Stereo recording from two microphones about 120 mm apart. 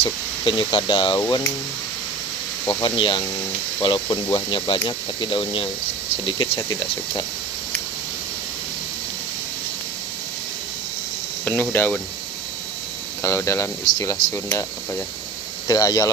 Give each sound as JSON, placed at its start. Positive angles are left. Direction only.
{"t": 0.0, "sound": "speech", "side_deg": 45}
{"t": 2.8, "sound": "speech", "side_deg": 45}
{"t": 6.2, "sound": "speech", "side_deg": 35}
{"t": 11.7, "sound": "speech", "side_deg": 15}
{"t": 13.2, "sound": "speech", "side_deg": 25}
{"t": 15.6, "sound": "speech", "side_deg": 30}